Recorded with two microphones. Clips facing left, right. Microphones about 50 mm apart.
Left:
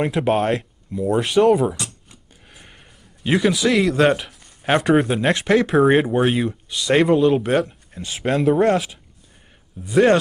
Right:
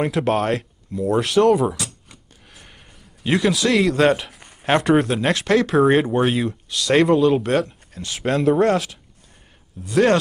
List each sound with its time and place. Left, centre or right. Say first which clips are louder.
0.0 s speech: left 1 dB; centre
2.5 s sniff: even; centre
3.3 s speech: left 1 dB; centre
4.4 s a sound: right 5 dB; right
4.6 s speech: even; centre